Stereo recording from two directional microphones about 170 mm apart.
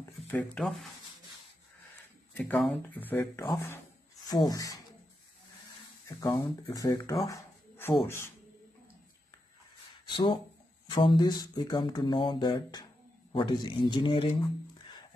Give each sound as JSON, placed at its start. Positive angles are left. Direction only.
{"t": 0.3, "sound": "speech", "side_deg": 5}
{"t": 2.3, "sound": "speech", "side_deg": 10}
{"t": 6.0, "sound": "speech", "side_deg": 20}
{"t": 7.2, "sound": "a sound", "side_deg": 10}
{"t": 10.0, "sound": "speech", "side_deg": 30}